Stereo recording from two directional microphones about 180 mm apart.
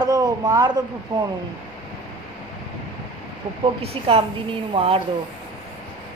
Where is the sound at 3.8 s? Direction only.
35° right (ahead or behind).